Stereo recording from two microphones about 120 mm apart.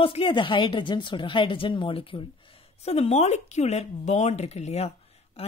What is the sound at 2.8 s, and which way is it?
Speech, 60° left (ahead or behind).